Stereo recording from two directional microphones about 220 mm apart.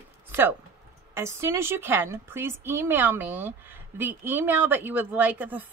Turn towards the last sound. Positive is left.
turn(degrees=-10)  # may be behind; listen again after turning